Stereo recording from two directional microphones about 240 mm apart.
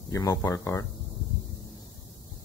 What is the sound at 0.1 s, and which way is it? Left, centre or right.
Speech, centre.